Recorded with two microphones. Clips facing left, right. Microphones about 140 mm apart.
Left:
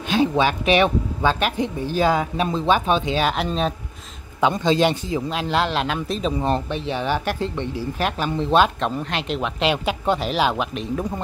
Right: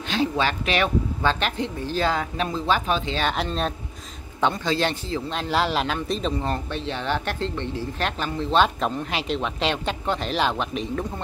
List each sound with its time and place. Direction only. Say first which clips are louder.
0.1 s speech: left 5 dB; 15° left (ahead or behind)
4.6 s speech: left 6 dB; 20° left (ahead or behind)
5.3 s speech: even; centre (ahead or behind)
6.3 s speech: left 4 dB; 15° left (ahead or behind)
8.6 s speech: left 1 dB; centre (ahead or behind)